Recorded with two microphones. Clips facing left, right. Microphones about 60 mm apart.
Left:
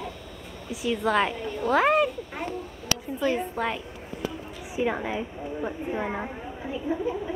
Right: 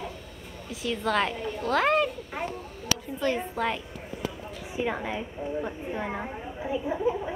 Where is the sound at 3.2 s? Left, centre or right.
Centre.